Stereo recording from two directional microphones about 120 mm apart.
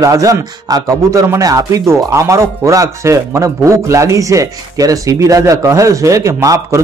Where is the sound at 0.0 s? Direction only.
30° right (ahead or behind).